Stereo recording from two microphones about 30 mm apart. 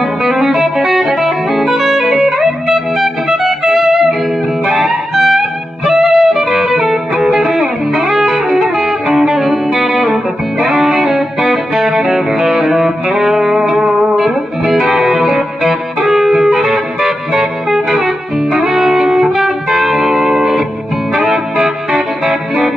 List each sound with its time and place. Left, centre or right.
0.0 s music: centre
14.2 s music: centre